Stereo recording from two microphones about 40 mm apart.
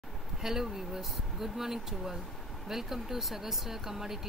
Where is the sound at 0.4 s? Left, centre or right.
Centre.